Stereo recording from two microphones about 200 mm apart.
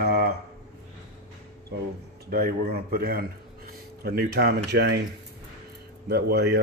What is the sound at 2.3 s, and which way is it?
Speech, 50° right (ahead or behind).